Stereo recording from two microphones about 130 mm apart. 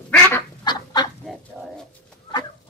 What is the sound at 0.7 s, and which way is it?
Fowl, 30° left (ahead or behind).